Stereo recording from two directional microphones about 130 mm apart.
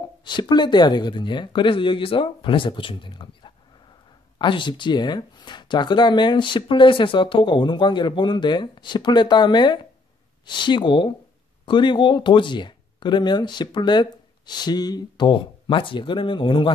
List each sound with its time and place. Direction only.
0.2 s speech: 35° left (ahead or behind)